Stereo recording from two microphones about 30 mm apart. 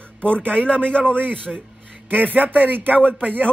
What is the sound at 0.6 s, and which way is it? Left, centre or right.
Speech, left.